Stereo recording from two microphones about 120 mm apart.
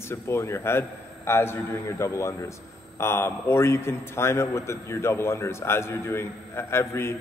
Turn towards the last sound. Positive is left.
turn(degrees=20)  # may be behind; listen again after turning